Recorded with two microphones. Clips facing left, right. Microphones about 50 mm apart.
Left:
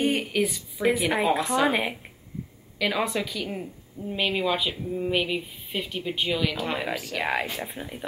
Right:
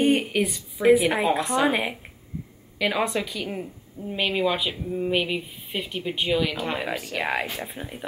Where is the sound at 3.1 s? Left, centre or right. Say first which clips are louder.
Right 1 dB; centre.